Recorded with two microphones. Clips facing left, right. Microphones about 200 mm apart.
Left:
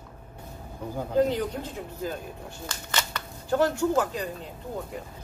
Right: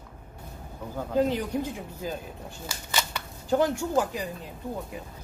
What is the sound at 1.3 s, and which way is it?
Speech, 15° right (ahead or behind).